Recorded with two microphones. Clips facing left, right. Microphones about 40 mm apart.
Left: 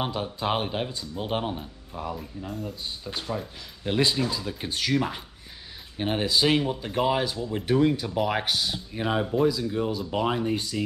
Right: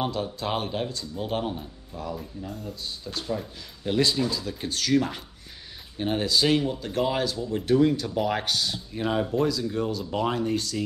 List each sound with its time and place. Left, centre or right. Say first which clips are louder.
0.0 s speech: even; centre
2.1 s speech: left 1 dB; centre
2.7 s speech: even; centre